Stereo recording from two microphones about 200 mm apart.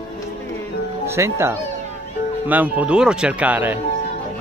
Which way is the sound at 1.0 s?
15° right (ahead or behind).